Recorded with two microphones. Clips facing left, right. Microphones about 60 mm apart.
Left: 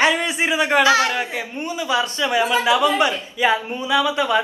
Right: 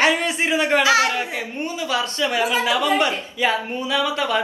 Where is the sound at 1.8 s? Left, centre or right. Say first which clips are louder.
Left 2 dB; left.